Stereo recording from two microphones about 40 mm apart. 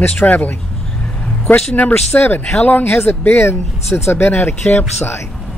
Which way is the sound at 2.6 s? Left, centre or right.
Left.